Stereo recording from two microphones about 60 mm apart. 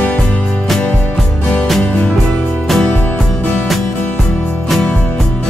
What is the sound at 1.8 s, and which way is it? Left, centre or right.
Music, left.